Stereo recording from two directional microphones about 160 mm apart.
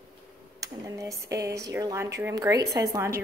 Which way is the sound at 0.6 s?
20° right (ahead or behind).